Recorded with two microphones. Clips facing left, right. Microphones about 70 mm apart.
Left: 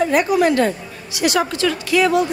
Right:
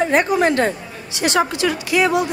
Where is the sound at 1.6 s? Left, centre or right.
Right.